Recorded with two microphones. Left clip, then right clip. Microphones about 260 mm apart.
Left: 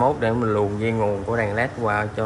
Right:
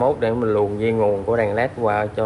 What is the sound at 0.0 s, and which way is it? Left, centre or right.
Speech, centre.